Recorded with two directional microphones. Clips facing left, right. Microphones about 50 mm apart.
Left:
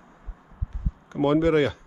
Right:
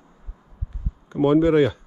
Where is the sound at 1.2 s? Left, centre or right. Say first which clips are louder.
Right 4 dB; left.